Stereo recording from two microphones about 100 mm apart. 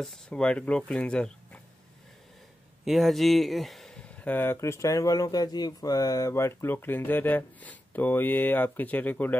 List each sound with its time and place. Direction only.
0.0 s speech: 5° left (ahead or behind)
2.8 s speech: centre (ahead or behind)
4.2 s speech: 20° left (ahead or behind)